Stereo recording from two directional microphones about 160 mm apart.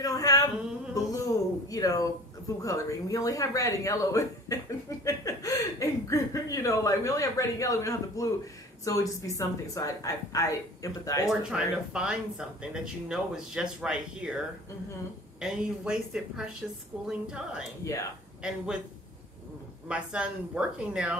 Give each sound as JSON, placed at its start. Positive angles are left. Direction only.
{"t": 0.0, "sound": "a sound", "side_deg": 20}
{"t": 2.6, "sound": "speech", "side_deg": 20}
{"t": 11.2, "sound": "speech", "side_deg": -5}
{"t": 15.4, "sound": "speech", "side_deg": -5}
{"t": 19.9, "sound": "speech", "side_deg": -5}